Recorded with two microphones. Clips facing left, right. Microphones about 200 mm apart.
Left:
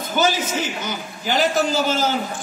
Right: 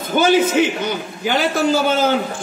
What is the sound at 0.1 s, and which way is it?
A man's voice, 55° right (ahead or behind).